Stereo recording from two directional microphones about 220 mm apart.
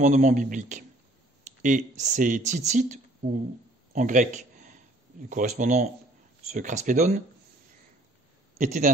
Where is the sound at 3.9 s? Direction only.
35° right (ahead or behind).